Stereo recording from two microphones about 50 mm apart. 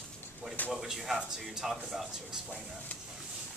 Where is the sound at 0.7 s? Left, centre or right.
Centre.